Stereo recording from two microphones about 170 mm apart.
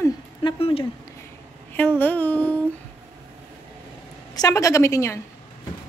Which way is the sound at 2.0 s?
10° left (ahead or behind).